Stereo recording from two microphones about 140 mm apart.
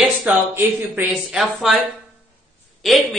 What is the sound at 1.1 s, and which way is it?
Speech, 5° right (ahead or behind).